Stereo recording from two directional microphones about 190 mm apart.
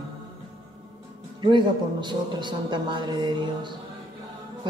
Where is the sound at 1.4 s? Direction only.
25° right (ahead or behind).